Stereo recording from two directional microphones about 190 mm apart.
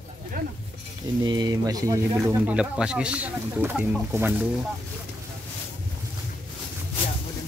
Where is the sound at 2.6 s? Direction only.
5° right (ahead or behind).